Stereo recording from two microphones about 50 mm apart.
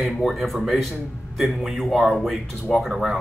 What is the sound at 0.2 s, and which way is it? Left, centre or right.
Speech, centre.